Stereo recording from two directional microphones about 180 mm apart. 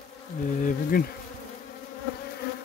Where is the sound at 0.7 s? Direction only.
50° left (ahead or behind).